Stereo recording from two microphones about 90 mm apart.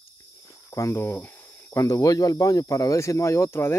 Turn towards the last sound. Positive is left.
turn(degrees=25)  # may be behind; listen again after turning